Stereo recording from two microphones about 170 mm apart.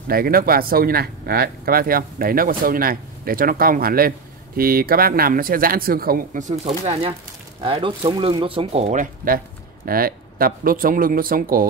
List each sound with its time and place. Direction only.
0.1 s speech: 60° right (ahead or behind)